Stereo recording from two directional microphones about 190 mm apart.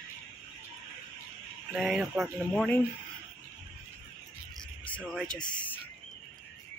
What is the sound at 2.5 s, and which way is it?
Speech, 5° left (ahead or behind).